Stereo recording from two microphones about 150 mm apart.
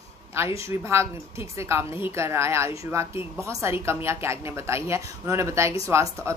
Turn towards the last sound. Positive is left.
turn(degrees=-20)  # may be behind; listen again after turning